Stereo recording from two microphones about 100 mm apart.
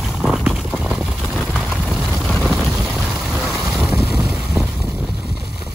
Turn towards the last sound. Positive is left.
turn(degrees=-10)  # may be behind; listen again after turning